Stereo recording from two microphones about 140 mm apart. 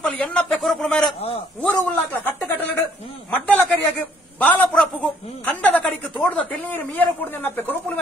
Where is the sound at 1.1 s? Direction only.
45° left (ahead or behind).